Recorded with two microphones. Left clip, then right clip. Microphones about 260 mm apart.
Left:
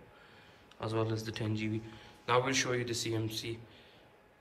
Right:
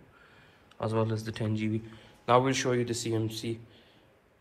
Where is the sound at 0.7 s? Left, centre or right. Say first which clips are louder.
Right 4 dB; centre.